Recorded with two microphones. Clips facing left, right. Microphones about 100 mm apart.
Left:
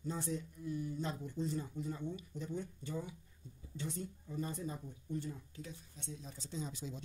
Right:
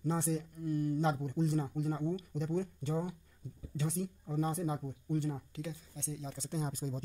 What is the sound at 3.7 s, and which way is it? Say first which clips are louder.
Speech: right 6 dB; 85° right.